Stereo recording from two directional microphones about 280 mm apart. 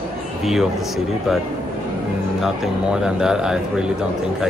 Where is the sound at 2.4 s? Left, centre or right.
Centre.